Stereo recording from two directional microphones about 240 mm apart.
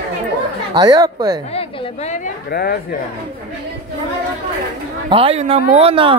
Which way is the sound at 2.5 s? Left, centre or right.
Left.